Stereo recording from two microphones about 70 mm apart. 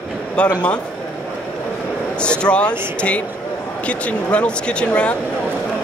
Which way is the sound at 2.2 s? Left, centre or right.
Centre.